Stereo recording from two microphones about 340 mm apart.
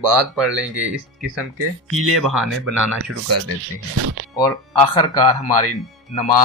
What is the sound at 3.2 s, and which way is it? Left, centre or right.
Speech, right.